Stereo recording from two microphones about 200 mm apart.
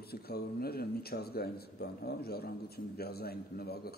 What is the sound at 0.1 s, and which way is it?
A man's voice, 50° left (ahead or behind).